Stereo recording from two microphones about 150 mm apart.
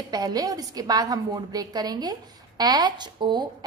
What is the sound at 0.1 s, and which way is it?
A woman's voice, 25° right (ahead or behind).